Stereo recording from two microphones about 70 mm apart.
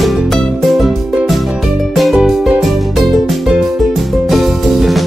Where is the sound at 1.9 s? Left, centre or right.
Centre.